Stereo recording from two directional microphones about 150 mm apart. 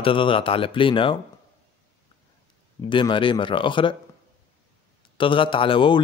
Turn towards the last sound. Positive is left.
turn(degrees=35)  # may be behind; listen again after turning